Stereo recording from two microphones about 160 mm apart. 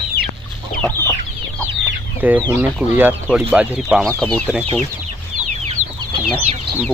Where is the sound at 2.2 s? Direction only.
10° right (ahead or behind).